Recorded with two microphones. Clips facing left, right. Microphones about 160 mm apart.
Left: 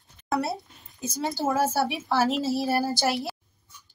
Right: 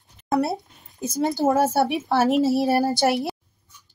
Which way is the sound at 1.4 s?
25° right (ahead or behind).